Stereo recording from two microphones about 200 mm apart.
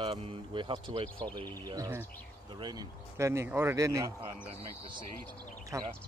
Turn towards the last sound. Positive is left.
turn(degrees=-15)  # may be behind; listen again after turning